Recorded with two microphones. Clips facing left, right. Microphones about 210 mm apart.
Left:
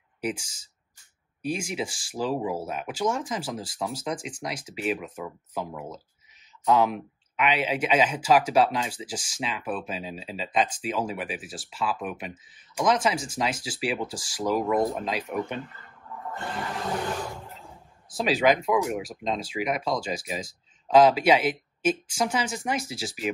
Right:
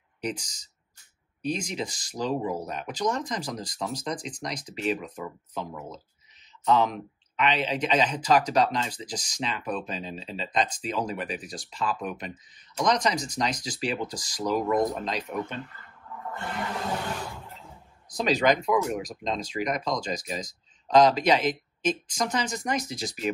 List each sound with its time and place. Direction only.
0.2 s speech: 5° left (ahead or behind)
18.1 s speech: 5° left (ahead or behind)